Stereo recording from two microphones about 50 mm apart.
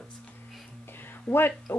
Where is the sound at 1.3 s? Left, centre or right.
Left.